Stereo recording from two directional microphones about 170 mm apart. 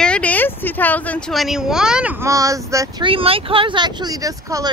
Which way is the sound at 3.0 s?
30° right (ahead or behind).